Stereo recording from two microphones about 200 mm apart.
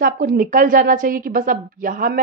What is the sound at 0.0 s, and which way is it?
A woman's voice, 45° right (ahead or behind).